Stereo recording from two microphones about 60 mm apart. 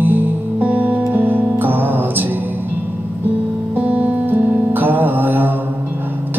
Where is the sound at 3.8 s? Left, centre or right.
Right.